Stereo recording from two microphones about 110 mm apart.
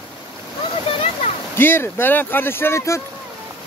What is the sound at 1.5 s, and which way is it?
Speech, 20° left (ahead or behind).